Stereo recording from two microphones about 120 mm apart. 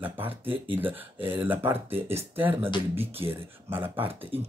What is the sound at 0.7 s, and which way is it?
Speech, 15° right (ahead or behind).